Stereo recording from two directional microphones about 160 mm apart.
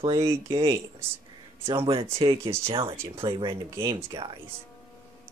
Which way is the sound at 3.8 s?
20° right (ahead or behind).